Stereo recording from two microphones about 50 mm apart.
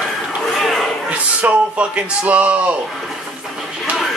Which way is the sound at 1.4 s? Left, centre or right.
Right.